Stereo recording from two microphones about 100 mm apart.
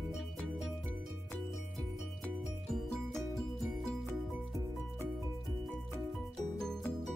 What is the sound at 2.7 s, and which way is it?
Music, 5° left (ahead or behind).